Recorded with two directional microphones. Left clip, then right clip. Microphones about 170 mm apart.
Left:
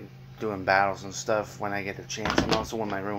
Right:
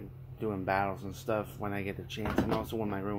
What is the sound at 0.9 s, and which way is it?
Speech, 15° left (ahead or behind).